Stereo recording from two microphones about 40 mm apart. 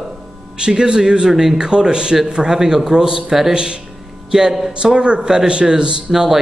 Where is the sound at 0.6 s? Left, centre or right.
Right.